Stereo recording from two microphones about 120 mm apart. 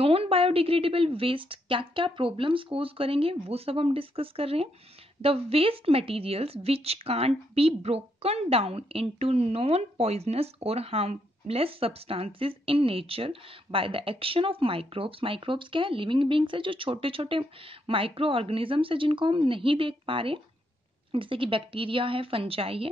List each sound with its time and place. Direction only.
0.0 s speech: 55° right (ahead or behind)